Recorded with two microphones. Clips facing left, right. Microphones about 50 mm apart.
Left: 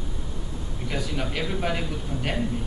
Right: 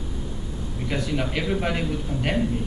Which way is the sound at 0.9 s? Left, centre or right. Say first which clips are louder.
Right 3 dB; centre.